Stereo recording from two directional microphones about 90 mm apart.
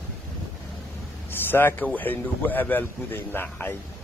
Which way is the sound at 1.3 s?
20° left (ahead or behind).